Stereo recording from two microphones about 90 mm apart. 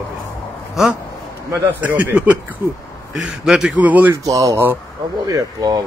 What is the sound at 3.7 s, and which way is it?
Speech, 20° right (ahead or behind).